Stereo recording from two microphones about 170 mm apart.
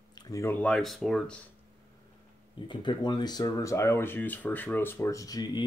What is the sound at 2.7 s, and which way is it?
Speech, 25° left (ahead or behind).